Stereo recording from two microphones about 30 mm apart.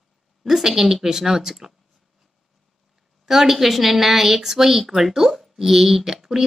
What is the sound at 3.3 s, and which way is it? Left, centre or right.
A woman's voice, centre.